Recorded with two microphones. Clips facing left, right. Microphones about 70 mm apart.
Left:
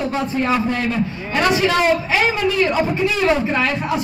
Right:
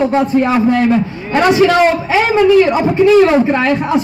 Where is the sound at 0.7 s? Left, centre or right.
Right.